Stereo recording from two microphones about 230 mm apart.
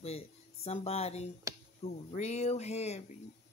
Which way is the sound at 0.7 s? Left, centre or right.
Left.